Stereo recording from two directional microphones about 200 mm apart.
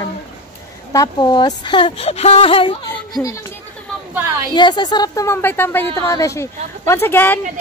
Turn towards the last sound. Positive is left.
turn(degrees=10)  # may be behind; listen again after turning